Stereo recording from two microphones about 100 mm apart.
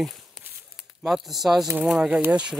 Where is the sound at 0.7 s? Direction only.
Centre (ahead or behind).